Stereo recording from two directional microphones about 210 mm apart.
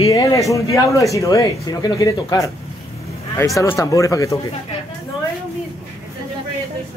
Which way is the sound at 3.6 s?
15° left (ahead or behind).